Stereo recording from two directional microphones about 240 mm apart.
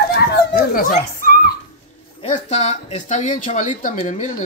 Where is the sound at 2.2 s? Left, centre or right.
Left.